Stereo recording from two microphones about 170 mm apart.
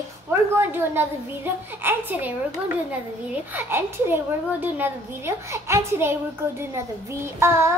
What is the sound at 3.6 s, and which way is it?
A woman's voice, 15° right (ahead or behind).